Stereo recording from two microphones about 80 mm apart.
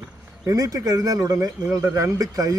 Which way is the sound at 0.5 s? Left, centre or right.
Right.